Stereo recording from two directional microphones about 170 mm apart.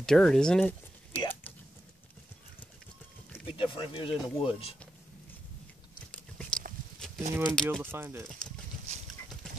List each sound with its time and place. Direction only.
0.0 s speech: 5° left (ahead or behind)
3.4 s speech: 30° left (ahead or behind)
6.1 s biting: 5° left (ahead or behind)
7.2 s speech: 10° right (ahead or behind)
8.3 s speech: 5° left (ahead or behind)